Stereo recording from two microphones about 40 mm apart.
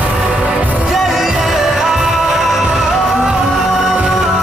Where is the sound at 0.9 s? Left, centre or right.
Centre.